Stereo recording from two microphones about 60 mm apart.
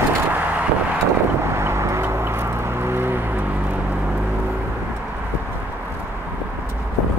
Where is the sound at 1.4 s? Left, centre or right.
Right.